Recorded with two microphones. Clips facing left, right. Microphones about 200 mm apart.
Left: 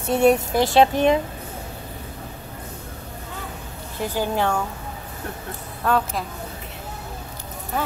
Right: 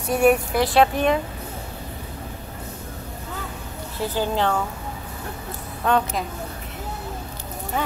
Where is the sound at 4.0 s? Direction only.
10° left (ahead or behind).